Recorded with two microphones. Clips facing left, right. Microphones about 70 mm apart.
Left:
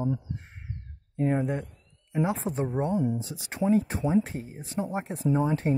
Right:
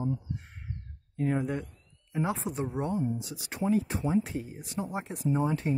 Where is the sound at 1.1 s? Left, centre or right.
Left.